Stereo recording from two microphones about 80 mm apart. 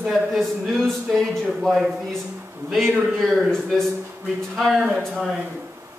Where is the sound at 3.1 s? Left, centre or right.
Centre.